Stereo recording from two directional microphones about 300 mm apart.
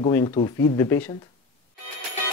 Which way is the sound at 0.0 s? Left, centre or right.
Centre.